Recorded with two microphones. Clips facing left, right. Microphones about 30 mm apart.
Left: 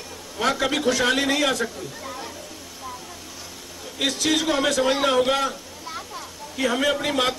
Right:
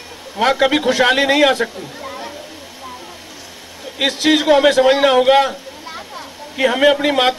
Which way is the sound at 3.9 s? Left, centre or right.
Right.